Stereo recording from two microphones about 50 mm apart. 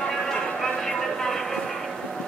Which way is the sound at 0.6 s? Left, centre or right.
Centre.